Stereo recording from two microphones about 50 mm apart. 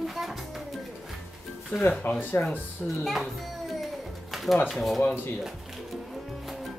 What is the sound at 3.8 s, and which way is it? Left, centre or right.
Music, centre.